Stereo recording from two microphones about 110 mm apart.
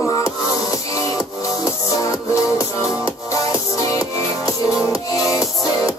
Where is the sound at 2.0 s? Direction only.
30° left (ahead or behind).